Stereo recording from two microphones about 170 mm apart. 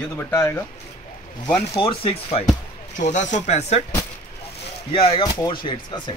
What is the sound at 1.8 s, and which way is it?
Speech, 35° left (ahead or behind).